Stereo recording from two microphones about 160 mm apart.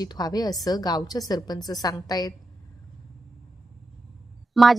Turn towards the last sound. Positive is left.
turn(degrees=0)  # may be behind; listen again after turning